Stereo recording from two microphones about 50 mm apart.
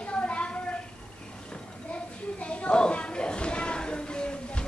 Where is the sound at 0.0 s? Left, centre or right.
Left.